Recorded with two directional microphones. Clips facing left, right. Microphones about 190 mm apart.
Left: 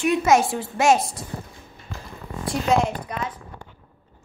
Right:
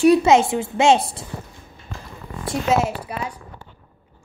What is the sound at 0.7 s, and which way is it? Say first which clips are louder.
Speech: right 2 dB; 30° right (ahead or behind).